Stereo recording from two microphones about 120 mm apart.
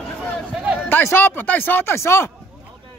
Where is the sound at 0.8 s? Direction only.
20° left (ahead or behind).